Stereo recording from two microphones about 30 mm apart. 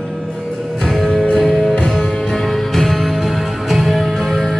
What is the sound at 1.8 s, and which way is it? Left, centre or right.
Music, centre.